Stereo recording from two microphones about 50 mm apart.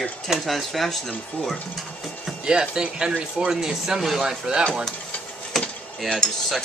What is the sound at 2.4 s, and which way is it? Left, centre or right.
Speech, centre.